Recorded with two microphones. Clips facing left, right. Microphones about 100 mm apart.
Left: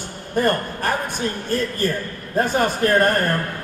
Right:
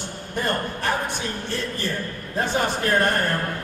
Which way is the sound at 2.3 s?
45° left (ahead or behind).